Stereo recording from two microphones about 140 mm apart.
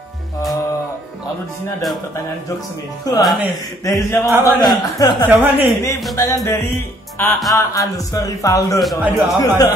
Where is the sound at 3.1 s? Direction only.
25° left (ahead or behind).